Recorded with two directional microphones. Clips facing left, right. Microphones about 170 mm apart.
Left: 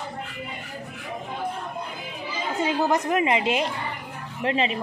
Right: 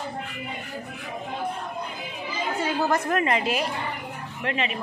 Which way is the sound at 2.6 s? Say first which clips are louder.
Left 2 dB; 15° left (ahead or behind).